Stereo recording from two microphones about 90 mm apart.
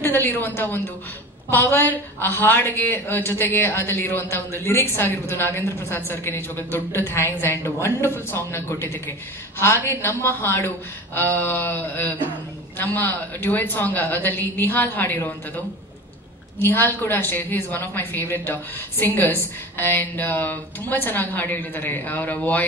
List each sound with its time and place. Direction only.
0.0 s a woman's voice: 25° left (ahead or behind)